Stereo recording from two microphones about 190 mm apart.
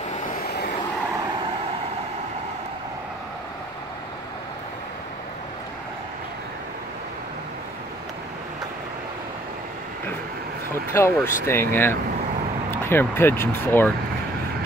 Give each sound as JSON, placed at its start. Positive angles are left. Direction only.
{"t": 0.5, "sound": "vehicle", "side_deg": 60}
{"t": 10.7, "sound": "speech", "side_deg": 15}